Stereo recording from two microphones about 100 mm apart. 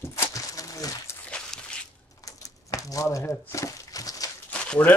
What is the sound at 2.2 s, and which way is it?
Crumpling, 35° left (ahead or behind).